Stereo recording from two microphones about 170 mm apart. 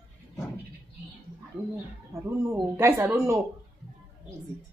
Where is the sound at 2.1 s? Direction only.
15° right (ahead or behind).